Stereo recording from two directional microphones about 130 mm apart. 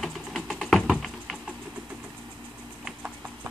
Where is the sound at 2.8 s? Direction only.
10° right (ahead or behind).